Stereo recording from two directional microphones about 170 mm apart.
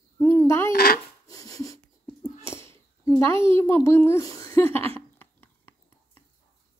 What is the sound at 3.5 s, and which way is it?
A child's voice, 15° left (ahead or behind).